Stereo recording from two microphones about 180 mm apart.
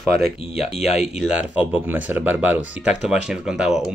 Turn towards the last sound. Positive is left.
turn(degrees=-5)  # may be behind; listen again after turning